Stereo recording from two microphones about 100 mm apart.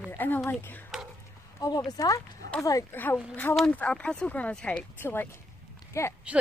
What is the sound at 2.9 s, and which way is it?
Speech, 20° left (ahead or behind).